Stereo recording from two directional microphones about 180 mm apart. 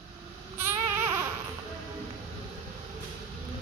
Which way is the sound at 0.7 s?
15° right (ahead or behind).